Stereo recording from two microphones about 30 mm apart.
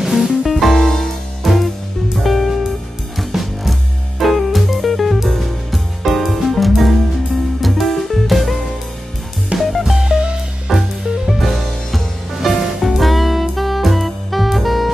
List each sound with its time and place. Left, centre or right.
0.0 s music: centre
3.3 s music: centre
4.2 s music: centre
9.6 s music: centre
9.9 s music: centre
10.7 s music: centre
12.8 s saxophone: centre